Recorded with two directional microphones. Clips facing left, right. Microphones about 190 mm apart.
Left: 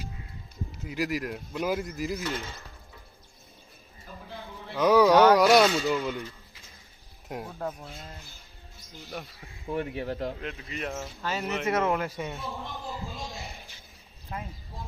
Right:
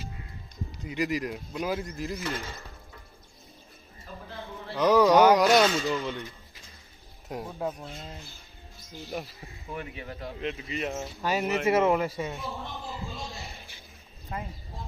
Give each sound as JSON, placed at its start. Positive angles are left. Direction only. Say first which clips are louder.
{"t": 0.7, "sound": "a man's voice", "louder": "right 1 dB", "side_deg": 0}
{"t": 4.7, "sound": "a man's voice", "louder": "even", "side_deg": 0}
{"t": 7.2, "sound": "a man's voice", "louder": "right 2 dB", "side_deg": 0}
{"t": 9.8, "sound": "speech", "louder": "left 7 dB", "side_deg": 60}
{"t": 10.7, "sound": "a man's voice", "louder": "right 1 dB", "side_deg": 0}
{"t": 11.1, "sound": "speech", "louder": "right 6 dB", "side_deg": -15}
{"t": 11.4, "sound": "a man's voice", "louder": "right 3 dB", "side_deg": 0}
{"t": 13.1, "sound": "a man's voice", "louder": "even", "side_deg": 15}